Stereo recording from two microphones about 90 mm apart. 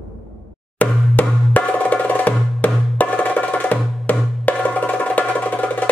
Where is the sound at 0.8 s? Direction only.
15° left (ahead or behind).